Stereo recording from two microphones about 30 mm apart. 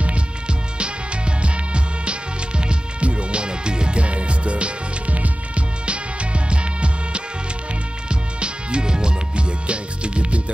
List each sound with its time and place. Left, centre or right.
0.7 s music: right
5.1 s music: right
6.5 s music: right